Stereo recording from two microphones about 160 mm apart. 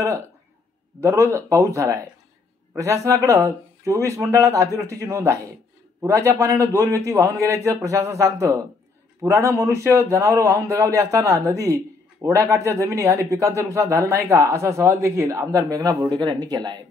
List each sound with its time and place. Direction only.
1.0 s a man's voice: 15° right (ahead or behind)